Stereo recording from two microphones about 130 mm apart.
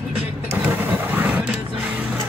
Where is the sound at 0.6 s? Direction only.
15° right (ahead or behind).